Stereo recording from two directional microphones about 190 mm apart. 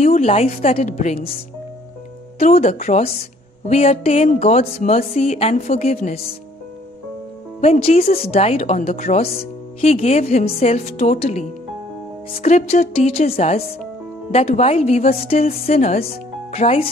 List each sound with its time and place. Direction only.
0.0 s a woman's voice: 35° left (ahead or behind)
2.3 s a woman's voice: 35° left (ahead or behind)
7.6 s a woman's voice: 35° left (ahead or behind)
12.9 s a woman's voice: 35° left (ahead or behind)